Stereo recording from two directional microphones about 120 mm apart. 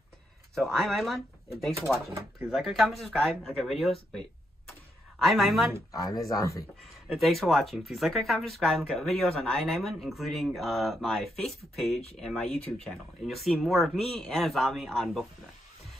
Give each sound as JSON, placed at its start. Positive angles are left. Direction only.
{"t": 0.6, "sound": "speech", "side_deg": 0}
{"t": 5.2, "sound": "speech", "side_deg": 0}
{"t": 5.9, "sound": "speech", "side_deg": 30}
{"t": 7.2, "sound": "speech", "side_deg": 0}